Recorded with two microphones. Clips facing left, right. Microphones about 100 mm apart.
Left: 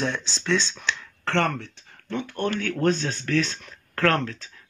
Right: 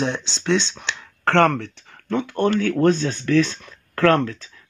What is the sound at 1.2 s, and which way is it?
Speech, 65° right (ahead or behind).